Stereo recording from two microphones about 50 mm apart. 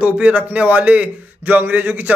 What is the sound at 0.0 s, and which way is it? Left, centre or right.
Speech, right.